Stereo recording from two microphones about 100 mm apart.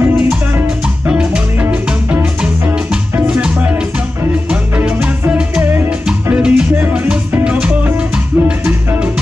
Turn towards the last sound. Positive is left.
turn(degrees=-10)  # may be behind; listen again after turning